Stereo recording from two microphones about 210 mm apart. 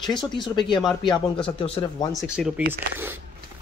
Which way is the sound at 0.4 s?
20° left (ahead or behind).